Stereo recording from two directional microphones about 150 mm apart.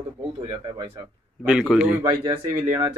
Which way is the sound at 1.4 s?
5° right (ahead or behind).